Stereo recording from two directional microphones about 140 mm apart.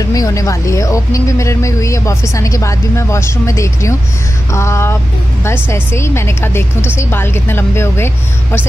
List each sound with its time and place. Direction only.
0.0 s a woman's voice: 25° left (ahead or behind)